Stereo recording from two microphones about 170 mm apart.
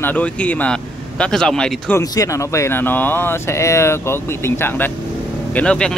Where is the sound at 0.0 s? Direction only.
10° left (ahead or behind).